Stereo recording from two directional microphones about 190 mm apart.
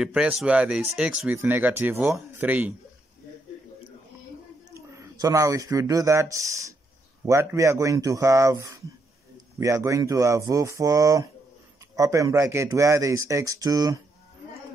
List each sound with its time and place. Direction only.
0.0 s speech: 5° right (ahead or behind)
4.9 s speech: 15° right (ahead or behind)